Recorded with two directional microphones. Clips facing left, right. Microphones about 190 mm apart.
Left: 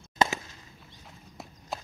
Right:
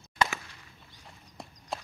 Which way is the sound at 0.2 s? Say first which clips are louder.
Left 3 dB; 20° left (ahead or behind).